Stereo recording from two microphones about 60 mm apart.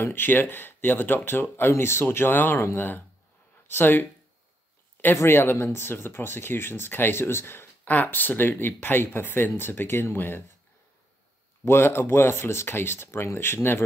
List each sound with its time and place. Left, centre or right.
0.0 s speech: left
5.1 s speech: left
11.6 s speech: left